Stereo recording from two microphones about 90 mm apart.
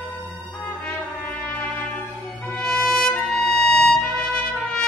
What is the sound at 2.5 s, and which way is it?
Trumpet, 10° left (ahead or behind).